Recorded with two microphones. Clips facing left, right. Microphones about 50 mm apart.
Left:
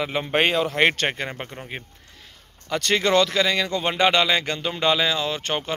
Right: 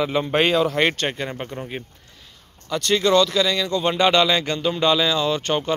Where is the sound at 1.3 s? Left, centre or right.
Left.